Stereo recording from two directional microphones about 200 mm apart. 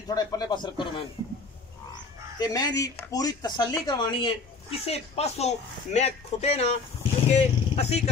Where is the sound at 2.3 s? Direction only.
20° left (ahead or behind).